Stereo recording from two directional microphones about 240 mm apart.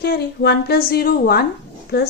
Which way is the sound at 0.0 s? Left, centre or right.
Left.